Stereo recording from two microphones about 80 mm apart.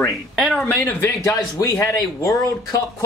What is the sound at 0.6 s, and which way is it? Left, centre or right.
Speech, left.